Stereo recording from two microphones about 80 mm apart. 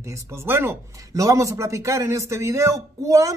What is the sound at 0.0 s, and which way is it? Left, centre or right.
A man's voice, right.